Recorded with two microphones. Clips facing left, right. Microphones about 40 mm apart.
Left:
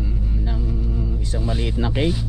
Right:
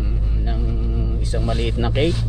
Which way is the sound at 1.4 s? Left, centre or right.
Right.